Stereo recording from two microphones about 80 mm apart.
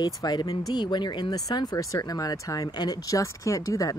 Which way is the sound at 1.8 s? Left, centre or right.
Left.